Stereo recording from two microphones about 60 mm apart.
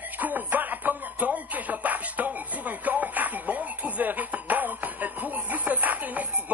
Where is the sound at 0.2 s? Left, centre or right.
Right.